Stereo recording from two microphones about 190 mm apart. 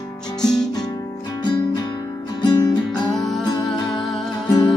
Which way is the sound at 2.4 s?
20° left (ahead or behind).